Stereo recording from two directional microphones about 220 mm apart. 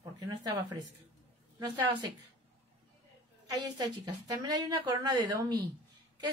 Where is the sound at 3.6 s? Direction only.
15° right (ahead or behind).